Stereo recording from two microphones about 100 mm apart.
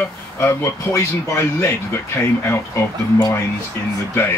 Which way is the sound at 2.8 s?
30° left (ahead or behind).